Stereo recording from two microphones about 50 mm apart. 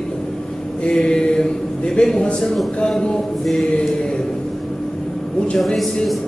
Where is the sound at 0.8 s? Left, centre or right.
Centre.